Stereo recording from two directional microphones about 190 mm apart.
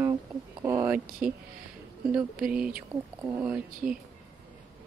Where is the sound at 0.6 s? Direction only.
15° right (ahead or behind).